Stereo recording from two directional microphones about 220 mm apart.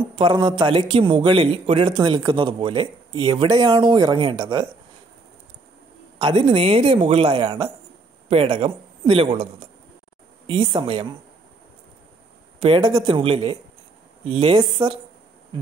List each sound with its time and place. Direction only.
0.2 s a man's voice: 20° right (ahead or behind)
6.1 s a man's voice: 20° right (ahead or behind)
12.5 s a man's voice: 25° right (ahead or behind)